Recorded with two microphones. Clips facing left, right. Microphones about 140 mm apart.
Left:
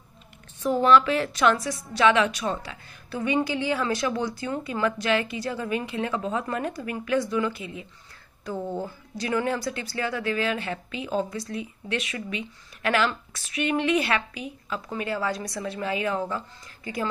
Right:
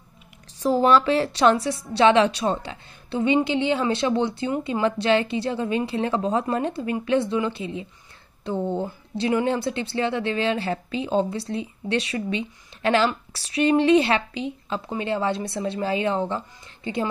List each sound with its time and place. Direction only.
0.6 s a woman's voice: 30° right (ahead or behind)